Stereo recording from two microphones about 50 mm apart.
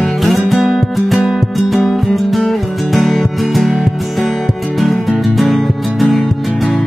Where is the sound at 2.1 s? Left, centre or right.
Centre.